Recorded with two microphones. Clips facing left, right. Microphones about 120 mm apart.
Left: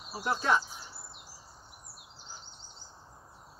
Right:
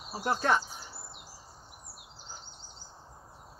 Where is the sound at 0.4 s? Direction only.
55° right (ahead or behind).